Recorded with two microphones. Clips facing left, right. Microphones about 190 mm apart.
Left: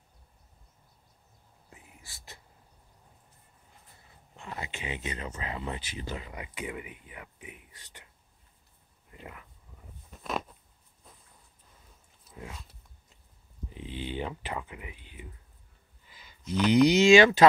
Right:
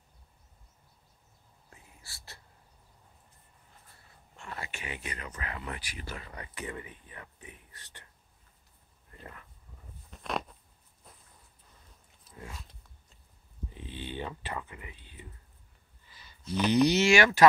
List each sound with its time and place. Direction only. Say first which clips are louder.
1.7 s whispering: left 2 dB; 15° left (ahead or behind)
4.4 s speech: left 3 dB; 20° left (ahead or behind)
9.1 s speech: left 2 dB; 10° left (ahead or behind)
10.1 s a sound: left 1 dB; centre (ahead or behind)
13.7 s speech: left 4 dB; 15° left (ahead or behind)
16.1 s a sound: left 2 dB; 15° left (ahead or behind)
16.8 s speech: left 6 dB; 15° left (ahead or behind)